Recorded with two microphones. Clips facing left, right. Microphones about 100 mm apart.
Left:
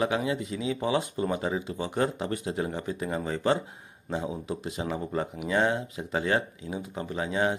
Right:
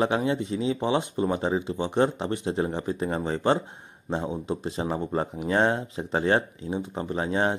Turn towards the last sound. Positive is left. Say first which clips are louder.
# right 2 dB
turn(degrees=-35)  # may be behind; listen again after turning